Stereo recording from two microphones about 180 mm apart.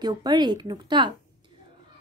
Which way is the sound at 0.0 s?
25° right (ahead or behind).